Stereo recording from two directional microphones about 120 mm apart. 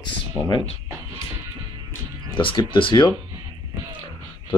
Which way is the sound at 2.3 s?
45° left (ahead or behind).